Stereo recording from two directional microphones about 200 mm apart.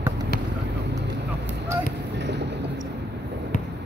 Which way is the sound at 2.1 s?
60° right (ahead or behind).